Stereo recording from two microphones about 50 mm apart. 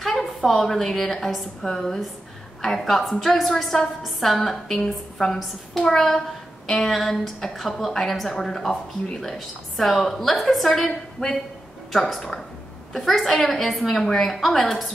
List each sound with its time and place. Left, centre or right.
0.0 s a woman's voice: centre
11.2 s speech: left
11.9 s a woman's voice: centre